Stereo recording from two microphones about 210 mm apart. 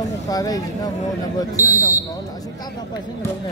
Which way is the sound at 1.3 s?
15° left (ahead or behind).